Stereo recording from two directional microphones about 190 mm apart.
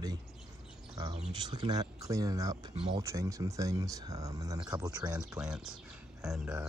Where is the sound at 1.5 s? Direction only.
20° right (ahead or behind).